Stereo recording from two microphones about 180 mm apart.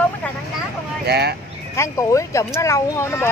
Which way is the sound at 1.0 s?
65° right (ahead or behind).